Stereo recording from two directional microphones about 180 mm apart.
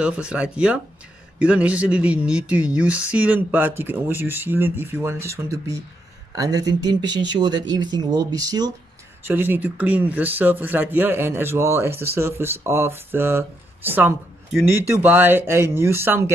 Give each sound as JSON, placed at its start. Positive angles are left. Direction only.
{"t": 0.0, "sound": "speech", "side_deg": -5}